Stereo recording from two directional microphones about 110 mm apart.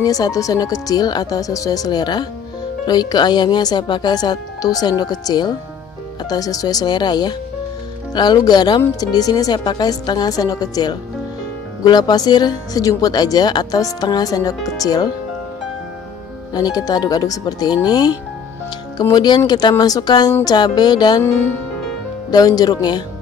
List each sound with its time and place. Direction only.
0.0 s speech: 35° left (ahead or behind)
16.5 s speech: 35° left (ahead or behind)
19.1 s speech: 40° left (ahead or behind)
21.2 s speech: 20° left (ahead or behind)
22.3 s speech: 35° left (ahead or behind)